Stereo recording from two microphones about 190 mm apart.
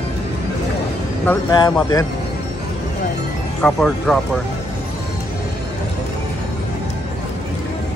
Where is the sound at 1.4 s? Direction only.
20° left (ahead or behind).